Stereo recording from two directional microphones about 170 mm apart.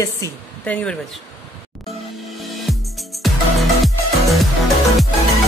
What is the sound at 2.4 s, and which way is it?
Music, centre (ahead or behind).